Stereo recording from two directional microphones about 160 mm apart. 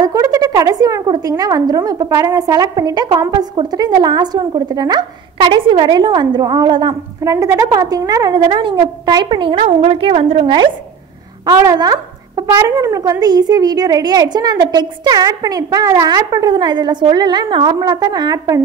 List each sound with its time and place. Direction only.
0.0 s speech: 20° right (ahead or behind)
9.7 s a woman's voice: 45° right (ahead or behind)
11.4 s speech: 25° right (ahead or behind)